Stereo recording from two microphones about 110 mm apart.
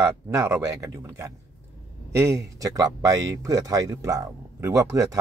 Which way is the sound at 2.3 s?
30° right (ahead or behind).